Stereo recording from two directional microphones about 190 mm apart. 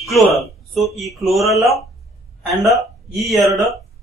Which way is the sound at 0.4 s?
Centre (ahead or behind).